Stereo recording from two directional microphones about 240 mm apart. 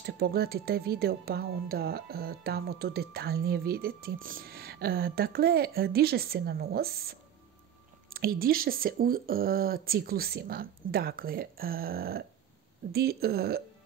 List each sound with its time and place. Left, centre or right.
0.0 s speech: right